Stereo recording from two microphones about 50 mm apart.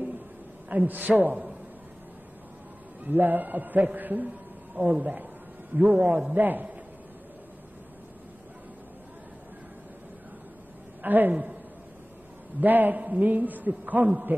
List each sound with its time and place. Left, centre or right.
0.7 s a man's voice: right
3.0 s a man's voice: right
11.0 s a man's voice: right
12.5 s a man's voice: right